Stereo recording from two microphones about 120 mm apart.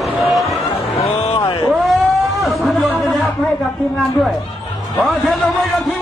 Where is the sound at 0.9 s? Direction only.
60° left (ahead or behind).